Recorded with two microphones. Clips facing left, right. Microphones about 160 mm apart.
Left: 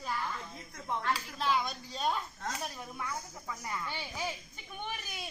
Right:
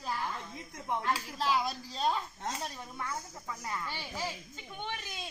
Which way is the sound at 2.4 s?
25° right (ahead or behind).